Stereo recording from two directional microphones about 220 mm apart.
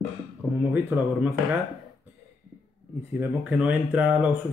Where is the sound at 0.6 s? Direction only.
10° right (ahead or behind).